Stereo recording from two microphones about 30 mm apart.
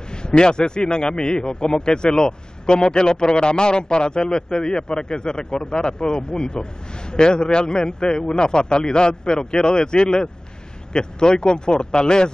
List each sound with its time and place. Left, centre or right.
0.4 s a man's voice: left